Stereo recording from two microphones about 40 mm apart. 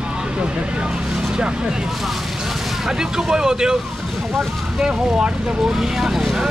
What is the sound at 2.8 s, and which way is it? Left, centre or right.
Speech, centre.